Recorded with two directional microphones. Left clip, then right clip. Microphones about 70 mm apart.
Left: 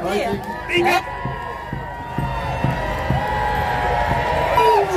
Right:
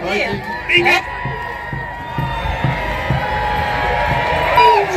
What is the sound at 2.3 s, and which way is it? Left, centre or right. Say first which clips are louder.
Music: right 2 dB; left.